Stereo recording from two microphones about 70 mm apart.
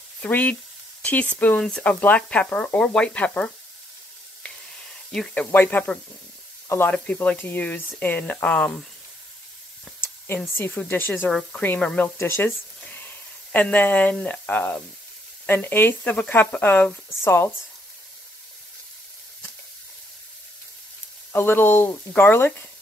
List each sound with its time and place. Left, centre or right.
0.2 s speech: left
5.3 s speech: left
6.9 s speech: left
10.6 s speech: left
12.2 s speech: left
12.8 s a sound: left
14.1 s speech: centre
21.3 s speech: left